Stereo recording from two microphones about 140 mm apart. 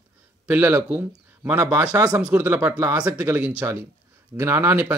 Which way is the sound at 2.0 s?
25° right (ahead or behind).